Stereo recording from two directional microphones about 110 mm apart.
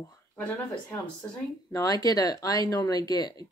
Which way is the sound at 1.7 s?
35° left (ahead or behind).